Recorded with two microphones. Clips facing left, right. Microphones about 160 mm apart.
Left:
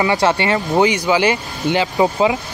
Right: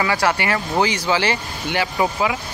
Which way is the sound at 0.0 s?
25° left (ahead or behind).